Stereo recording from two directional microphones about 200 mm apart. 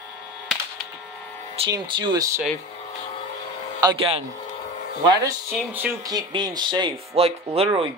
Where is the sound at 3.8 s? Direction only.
25° right (ahead or behind).